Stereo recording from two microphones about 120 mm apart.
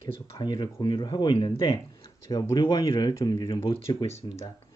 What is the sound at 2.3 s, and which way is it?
Speech, 35° left (ahead or behind).